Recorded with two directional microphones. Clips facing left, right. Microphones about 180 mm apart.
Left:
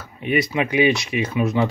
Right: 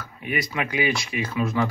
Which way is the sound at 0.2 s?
25° left (ahead or behind).